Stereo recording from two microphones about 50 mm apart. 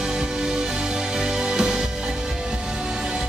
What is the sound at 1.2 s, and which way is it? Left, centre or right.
Music, centre.